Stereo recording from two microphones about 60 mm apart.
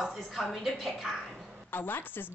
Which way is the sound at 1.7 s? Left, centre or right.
Left.